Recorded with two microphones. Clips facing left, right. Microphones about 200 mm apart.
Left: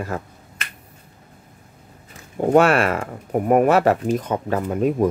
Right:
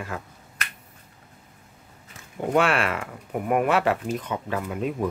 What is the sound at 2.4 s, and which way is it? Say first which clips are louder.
Speech: left 7 dB; 40° left (ahead or behind).